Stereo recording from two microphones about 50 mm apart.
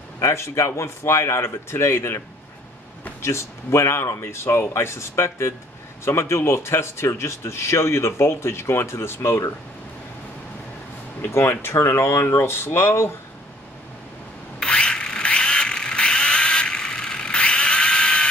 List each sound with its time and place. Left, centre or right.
0.2 s speech: left
11.1 s speech: left
14.6 s mechanisms: centre